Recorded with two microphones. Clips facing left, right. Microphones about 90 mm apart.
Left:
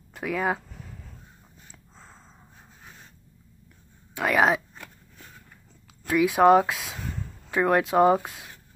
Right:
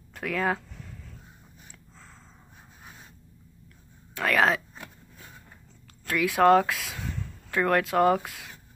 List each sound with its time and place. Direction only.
0.1 s speech: 15° left (ahead or behind)
1.7 s a sound: 20° left (ahead or behind)
4.1 s speech: 15° left (ahead or behind)
6.0 s speech: 20° left (ahead or behind)